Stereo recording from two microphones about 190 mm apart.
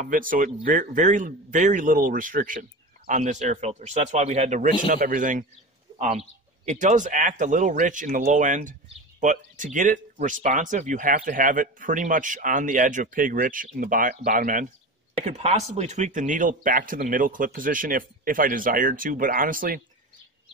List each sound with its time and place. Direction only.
0.0 s speech: 45° right (ahead or behind)